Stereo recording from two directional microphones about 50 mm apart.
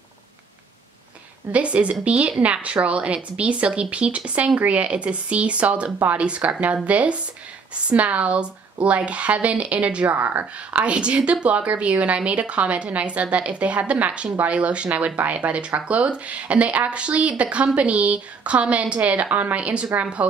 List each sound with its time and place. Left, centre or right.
1.5 s speech: right
10.1 s speech: right